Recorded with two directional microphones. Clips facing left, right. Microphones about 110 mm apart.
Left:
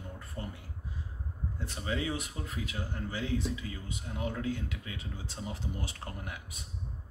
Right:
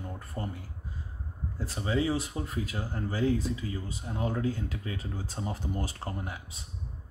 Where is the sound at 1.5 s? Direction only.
35° right (ahead or behind).